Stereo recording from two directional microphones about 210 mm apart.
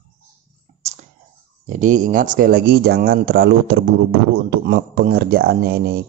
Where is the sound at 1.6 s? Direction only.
35° right (ahead or behind).